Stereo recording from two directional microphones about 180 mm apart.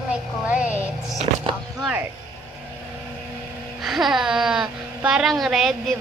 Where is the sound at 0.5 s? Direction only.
5° right (ahead or behind).